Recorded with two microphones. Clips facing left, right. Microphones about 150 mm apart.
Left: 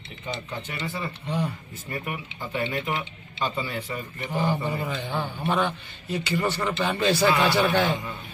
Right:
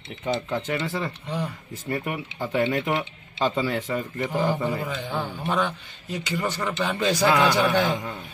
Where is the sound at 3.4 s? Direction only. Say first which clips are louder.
Right 5 dB; 80° right.